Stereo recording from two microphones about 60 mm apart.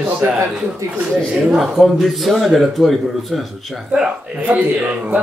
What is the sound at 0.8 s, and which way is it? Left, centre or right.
Speech, right.